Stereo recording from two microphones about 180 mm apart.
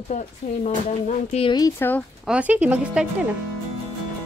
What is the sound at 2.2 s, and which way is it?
Speech, 5° right (ahead or behind).